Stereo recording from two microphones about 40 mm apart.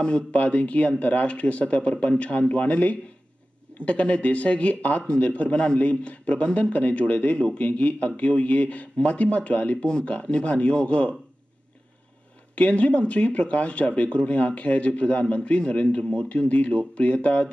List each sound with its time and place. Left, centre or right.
0.3 s speech: left
12.5 s speech: left